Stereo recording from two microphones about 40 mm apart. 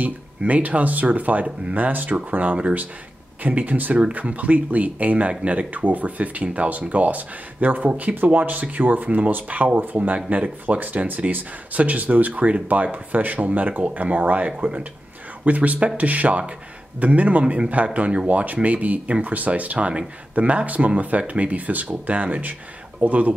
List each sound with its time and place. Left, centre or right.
0.0 s speech: right
4.0 s speech: right